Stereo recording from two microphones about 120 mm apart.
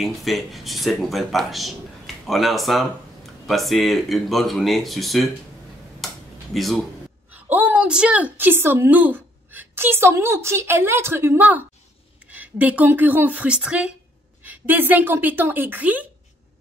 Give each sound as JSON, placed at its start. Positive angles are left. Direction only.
{"t": 0.0, "sound": "speech", "side_deg": 0}
{"t": 5.9, "sound": "a sound", "side_deg": 0}
{"t": 7.2, "sound": "a woman's voice", "side_deg": -15}